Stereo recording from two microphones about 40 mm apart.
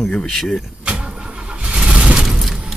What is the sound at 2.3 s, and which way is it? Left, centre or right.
Boom, centre.